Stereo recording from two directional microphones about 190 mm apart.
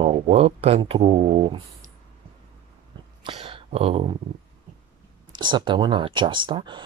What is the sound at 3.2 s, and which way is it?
Speech, 30° right (ahead or behind).